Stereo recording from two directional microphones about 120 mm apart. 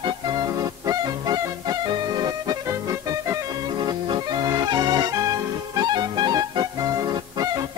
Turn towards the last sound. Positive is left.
turn(degrees=-30)  # may be behind; listen again after turning